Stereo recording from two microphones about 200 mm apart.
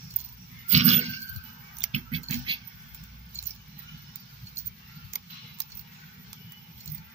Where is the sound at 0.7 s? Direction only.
35° right (ahead or behind).